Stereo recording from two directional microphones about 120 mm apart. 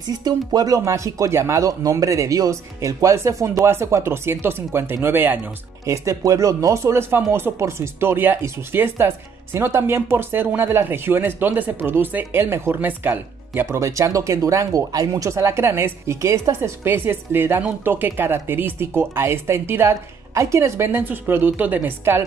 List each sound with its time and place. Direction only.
0.2 s speech: 35° right (ahead or behind); by 22.2 s 20° right (ahead or behind)